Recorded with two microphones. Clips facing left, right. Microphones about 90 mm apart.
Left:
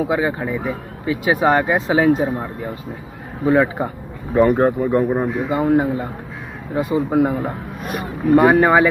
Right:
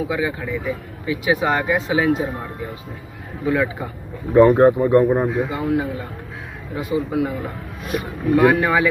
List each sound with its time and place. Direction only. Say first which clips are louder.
0.0 s speech: left 4 dB; 40° left (ahead or behind)
3.4 s speech: left 5 dB; 35° left (ahead or behind)
4.3 s speech: right 3 dB; 5° left (ahead or behind)
5.5 s speech: left 5 dB; 40° left (ahead or behind)